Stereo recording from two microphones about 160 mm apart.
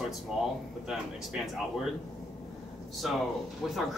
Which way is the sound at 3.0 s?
Centre (ahead or behind).